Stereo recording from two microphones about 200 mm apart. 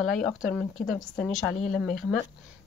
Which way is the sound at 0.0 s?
Centre (ahead or behind).